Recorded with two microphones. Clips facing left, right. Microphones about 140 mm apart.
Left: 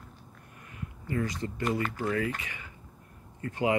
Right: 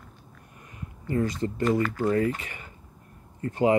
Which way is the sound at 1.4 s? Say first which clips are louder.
Right 6 dB; 35° right (ahead or behind).